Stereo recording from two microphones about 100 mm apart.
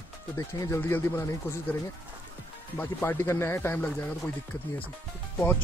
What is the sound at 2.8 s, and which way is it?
Speech, 20° left (ahead or behind).